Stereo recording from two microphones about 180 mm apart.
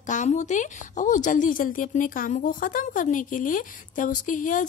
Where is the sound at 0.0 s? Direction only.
45° left (ahead or behind).